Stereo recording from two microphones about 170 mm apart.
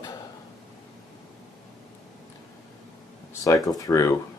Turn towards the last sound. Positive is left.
turn(degrees=20)  # may be behind; listen again after turning